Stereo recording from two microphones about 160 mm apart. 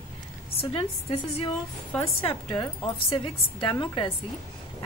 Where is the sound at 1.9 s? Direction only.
15° left (ahead or behind).